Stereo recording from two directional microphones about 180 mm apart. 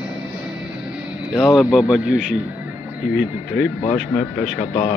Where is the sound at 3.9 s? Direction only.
5° left (ahead or behind).